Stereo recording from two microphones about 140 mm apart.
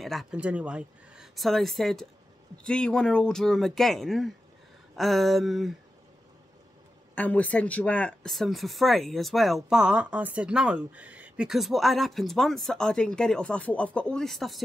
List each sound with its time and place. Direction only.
0.0 s speech: centre (ahead or behind)
7.2 s speech: 10° left (ahead or behind)